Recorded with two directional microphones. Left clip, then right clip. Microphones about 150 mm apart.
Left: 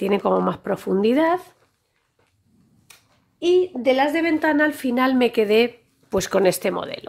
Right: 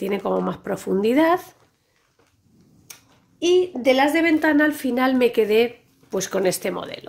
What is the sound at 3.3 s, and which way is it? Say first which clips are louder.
A woman's voice: even; 25° left (ahead or behind).